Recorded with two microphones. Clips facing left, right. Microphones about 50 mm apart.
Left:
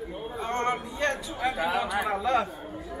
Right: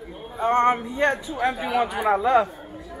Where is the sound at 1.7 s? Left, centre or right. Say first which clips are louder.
Right 6 dB; right.